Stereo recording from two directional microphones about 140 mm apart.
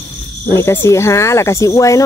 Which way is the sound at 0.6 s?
20° left (ahead or behind).